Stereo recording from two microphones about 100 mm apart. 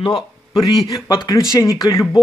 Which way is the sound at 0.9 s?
40° left (ahead or behind).